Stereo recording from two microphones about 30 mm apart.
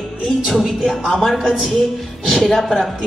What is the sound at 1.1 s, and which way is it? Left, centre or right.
Speech, centre.